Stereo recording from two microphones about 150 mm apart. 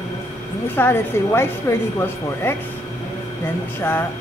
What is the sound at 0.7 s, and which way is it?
A woman's voice, 15° left (ahead or behind).